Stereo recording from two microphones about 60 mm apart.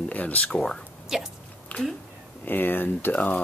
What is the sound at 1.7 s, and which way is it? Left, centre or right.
Cat, centre.